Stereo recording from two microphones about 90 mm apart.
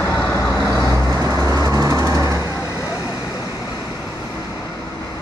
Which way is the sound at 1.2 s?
35° right (ahead or behind).